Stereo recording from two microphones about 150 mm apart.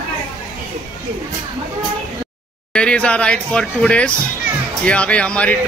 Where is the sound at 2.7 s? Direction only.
5° left (ahead or behind).